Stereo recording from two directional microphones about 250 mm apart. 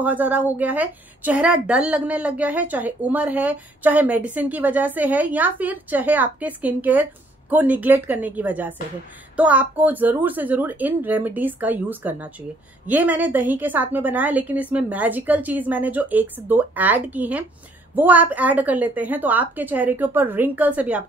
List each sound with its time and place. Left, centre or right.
0.0 s a woman's voice: centre